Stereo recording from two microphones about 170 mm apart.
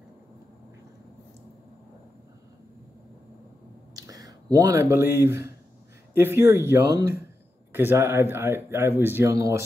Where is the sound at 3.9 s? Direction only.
20° right (ahead or behind).